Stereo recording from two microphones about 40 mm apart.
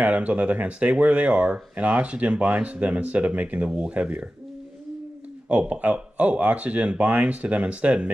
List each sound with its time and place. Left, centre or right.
0.0 s speech: right
5.5 s speech: right